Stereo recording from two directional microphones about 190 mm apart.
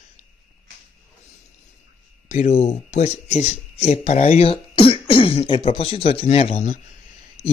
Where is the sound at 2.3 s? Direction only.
35° left (ahead or behind).